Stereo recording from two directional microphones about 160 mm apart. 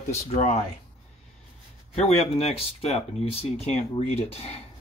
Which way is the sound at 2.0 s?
40° left (ahead or behind).